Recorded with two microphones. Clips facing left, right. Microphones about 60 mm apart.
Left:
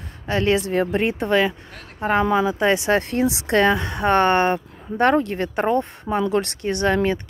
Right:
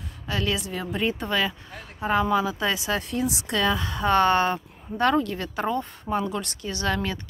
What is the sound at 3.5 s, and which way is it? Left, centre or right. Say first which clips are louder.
Speech: left 7 dB; left.